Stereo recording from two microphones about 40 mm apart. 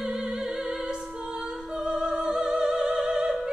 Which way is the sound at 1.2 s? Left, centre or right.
Centre.